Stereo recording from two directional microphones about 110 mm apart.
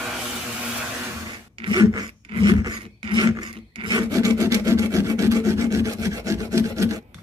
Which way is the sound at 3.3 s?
40° right (ahead or behind).